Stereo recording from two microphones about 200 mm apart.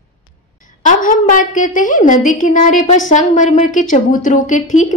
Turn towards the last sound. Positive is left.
turn(degrees=40)  # may be behind; listen again after turning